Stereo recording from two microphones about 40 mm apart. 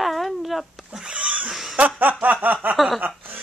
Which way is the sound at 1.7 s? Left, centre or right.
Right.